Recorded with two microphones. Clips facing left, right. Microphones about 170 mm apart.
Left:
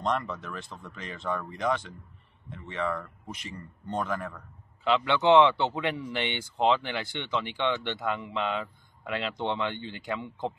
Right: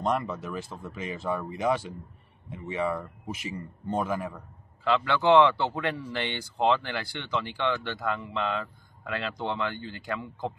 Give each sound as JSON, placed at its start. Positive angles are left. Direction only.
{"t": 0.0, "sound": "a man's voice", "side_deg": -5}
{"t": 4.8, "sound": "speech", "side_deg": 20}